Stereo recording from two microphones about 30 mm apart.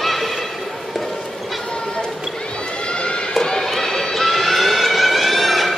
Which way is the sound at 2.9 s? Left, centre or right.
Left.